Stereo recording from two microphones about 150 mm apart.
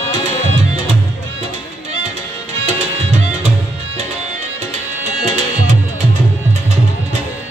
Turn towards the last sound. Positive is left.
turn(degrees=-50)  # may be behind; listen again after turning